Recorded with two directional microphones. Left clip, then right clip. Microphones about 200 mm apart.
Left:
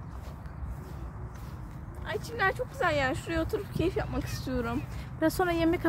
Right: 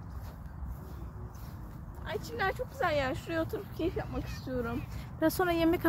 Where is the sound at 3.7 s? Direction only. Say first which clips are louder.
Left 4 dB; 45° left (ahead or behind).